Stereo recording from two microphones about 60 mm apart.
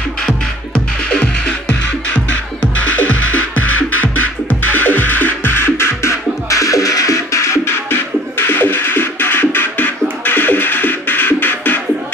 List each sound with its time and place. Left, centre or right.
0.7 s music: centre; by 6.1 s left
6.5 s music: left